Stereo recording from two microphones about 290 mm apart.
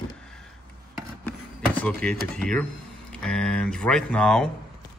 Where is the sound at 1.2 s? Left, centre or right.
Centre.